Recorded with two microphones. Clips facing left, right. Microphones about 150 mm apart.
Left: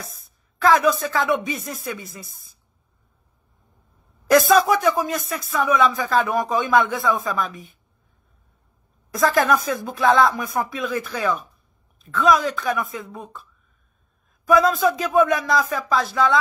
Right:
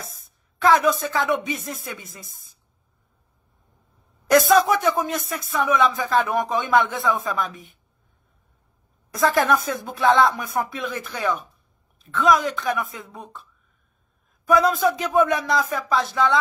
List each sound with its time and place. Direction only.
0.6 s speech: 20° right (ahead or behind)
4.3 s speech: 25° right (ahead or behind)
9.2 s speech: 20° right (ahead or behind)
14.5 s speech: 20° right (ahead or behind)